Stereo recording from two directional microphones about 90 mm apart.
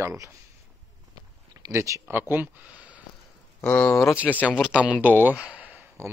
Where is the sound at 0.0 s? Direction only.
35° right (ahead or behind).